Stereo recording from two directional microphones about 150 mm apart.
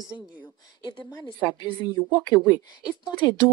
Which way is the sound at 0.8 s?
30° left (ahead or behind).